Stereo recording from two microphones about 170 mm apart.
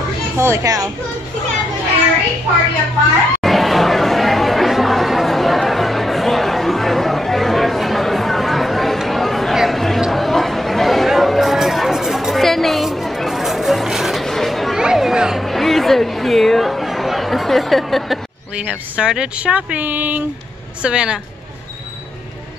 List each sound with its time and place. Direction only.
0.4 s a child's voice: 15° right (ahead or behind)
3.3 s chatter: centre (ahead or behind)
20.8 s speech: 5° right (ahead or behind)